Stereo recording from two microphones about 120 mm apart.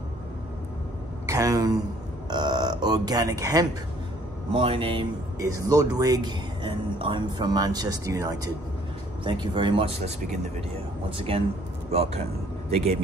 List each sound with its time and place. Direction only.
1.2 s speech: 30° right (ahead or behind)
4.5 s speech: 50° right (ahead or behind)
5.4 s speech: 30° right (ahead or behind); by 10.4 s 60° right (ahead or behind)
11.1 s speech: 50° right (ahead or behind)
11.9 s speech: 60° right (ahead or behind)